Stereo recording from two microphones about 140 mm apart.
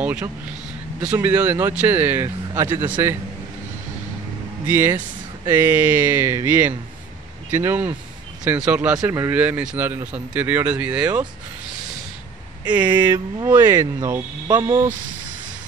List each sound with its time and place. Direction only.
0.0 s vehicle: 10° right (ahead or behind)
1.0 s speech: 10° right (ahead or behind)
4.6 s speech: 15° right (ahead or behind)
12.6 s speech: 10° right (ahead or behind)
14.5 s speech: 35° right (ahead or behind)